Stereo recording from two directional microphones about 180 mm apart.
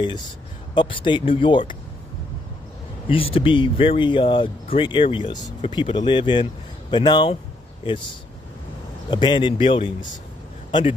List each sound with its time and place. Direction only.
0.7 s speech: 25° left (ahead or behind)
3.1 s a man's voice: 30° left (ahead or behind)